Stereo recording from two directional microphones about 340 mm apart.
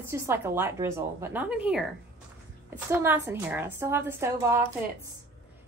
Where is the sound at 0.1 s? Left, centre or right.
Centre.